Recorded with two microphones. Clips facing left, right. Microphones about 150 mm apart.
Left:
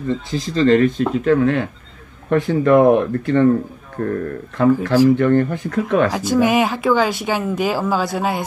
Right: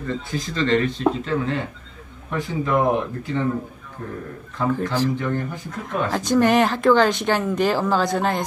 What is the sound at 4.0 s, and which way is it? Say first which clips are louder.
Speech: left 11 dB; 70° left (ahead or behind).